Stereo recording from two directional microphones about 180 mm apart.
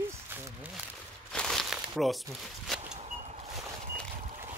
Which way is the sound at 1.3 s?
Centre (ahead or behind).